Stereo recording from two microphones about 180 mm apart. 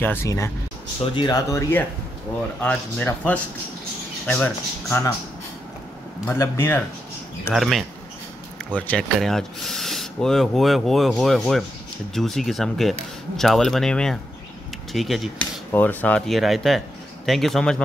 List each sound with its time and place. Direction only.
0.0 s speech: 15° left (ahead or behind)
6.3 s speech: 15° left (ahead or behind)
7.5 s speech: centre (ahead or behind)
15.7 s speech: 10° left (ahead or behind)